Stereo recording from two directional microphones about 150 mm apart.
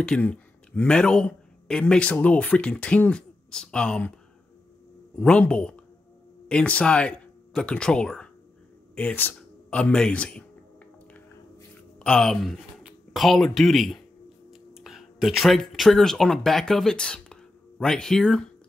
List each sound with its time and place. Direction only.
0.0 s speech: 5° left (ahead or behind)
5.1 s a woman's voice: 10° left (ahead or behind)
12.0 s speech: 5° left (ahead or behind)